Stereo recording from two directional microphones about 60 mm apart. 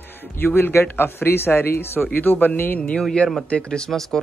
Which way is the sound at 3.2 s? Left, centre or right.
Left.